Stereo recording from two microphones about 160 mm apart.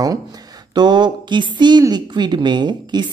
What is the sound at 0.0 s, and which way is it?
A woman's voice, 25° right (ahead or behind).